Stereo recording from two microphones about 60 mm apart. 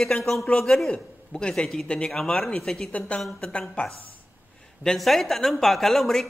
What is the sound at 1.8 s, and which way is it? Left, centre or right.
A man's voice, centre.